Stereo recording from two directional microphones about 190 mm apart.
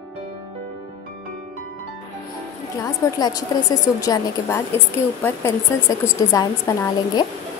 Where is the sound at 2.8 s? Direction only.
20° left (ahead or behind).